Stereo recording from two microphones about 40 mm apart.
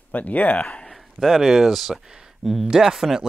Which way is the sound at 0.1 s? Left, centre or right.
Left.